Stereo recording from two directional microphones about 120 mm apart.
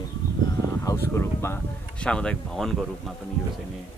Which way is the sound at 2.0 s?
5° left (ahead or behind).